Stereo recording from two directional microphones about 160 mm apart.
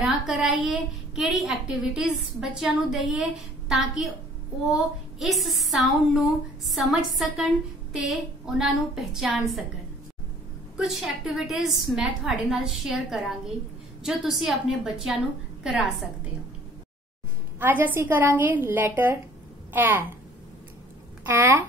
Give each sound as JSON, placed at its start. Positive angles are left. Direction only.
{"t": 0.0, "sound": "a woman's voice", "side_deg": 0}
{"t": 10.8, "sound": "a woman's voice", "side_deg": 0}
{"t": 17.6, "sound": "a woman's voice", "side_deg": -10}
{"t": 21.3, "sound": "a woman's voice", "side_deg": -15}